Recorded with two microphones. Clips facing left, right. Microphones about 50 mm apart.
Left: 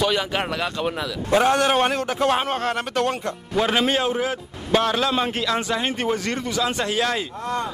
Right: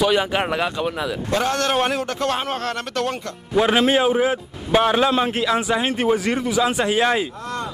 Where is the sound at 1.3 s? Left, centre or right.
Centre.